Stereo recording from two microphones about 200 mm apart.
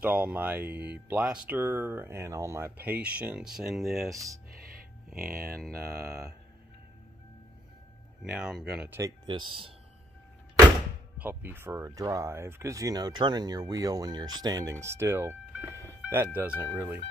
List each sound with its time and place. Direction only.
0.0 s speech: 10° right (ahead or behind)
4.1 s speech: 15° right (ahead or behind)
5.1 s speech: 50° right (ahead or behind)
5.4 s mantra: 5° right (ahead or behind)
8.2 s speech: 5° right (ahead or behind); by 9.8 s 25° right (ahead or behind)
11.1 s speech: 10° right (ahead or behind)